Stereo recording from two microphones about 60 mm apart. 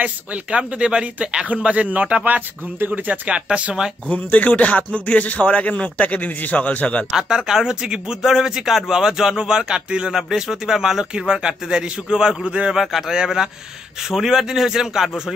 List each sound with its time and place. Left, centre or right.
0.0 s speech: right
4.1 s speech: left
7.1 s speech: centre
12.8 s speech: centre